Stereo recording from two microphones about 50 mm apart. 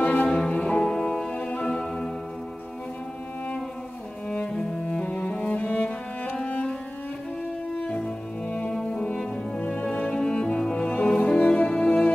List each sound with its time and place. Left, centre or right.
0.0 s music: left
0.5 s music: left
4.5 s cello: centre
5.7 s music: left
7.8 s cello: left
8.7 s music: centre
9.6 s music: left
10.1 s music: centre